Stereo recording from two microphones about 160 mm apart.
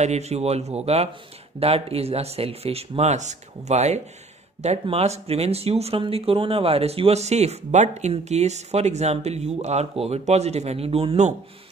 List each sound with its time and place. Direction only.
0.0 s speech: 45° right (ahead or behind)